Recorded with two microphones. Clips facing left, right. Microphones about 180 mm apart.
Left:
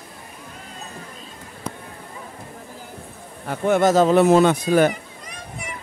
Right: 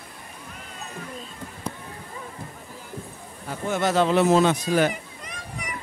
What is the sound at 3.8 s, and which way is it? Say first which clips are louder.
Speech: left 4 dB; 45° left (ahead or behind).